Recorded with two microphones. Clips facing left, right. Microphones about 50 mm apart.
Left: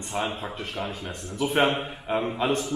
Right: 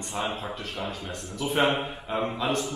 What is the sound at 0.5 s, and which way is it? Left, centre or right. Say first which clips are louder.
Speech: left 2 dB; centre.